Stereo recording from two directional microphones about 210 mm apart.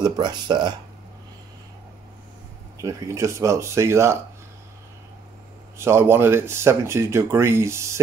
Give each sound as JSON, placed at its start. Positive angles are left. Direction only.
{"t": 0.0, "sound": "speech", "side_deg": -20}
{"t": 2.8, "sound": "speech", "side_deg": -15}
{"t": 5.8, "sound": "speech", "side_deg": -10}